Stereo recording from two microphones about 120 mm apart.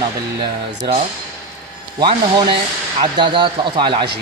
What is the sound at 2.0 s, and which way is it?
A man's voice, 40° right (ahead or behind).